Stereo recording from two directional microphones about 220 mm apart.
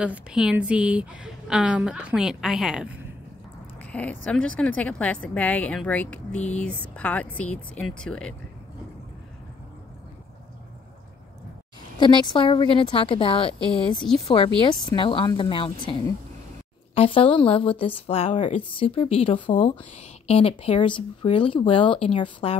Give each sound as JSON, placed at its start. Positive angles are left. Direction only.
{"t": 0.0, "sound": "a woman's voice", "side_deg": -5}
{"t": 3.9, "sound": "a woman's voice", "side_deg": 5}
{"t": 12.0, "sound": "a woman's voice", "side_deg": 20}